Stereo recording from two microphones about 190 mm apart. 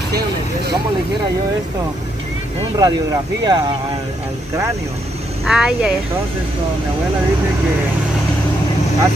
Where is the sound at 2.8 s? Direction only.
20° right (ahead or behind).